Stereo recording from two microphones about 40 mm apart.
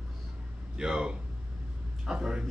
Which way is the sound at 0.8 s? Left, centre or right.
Centre.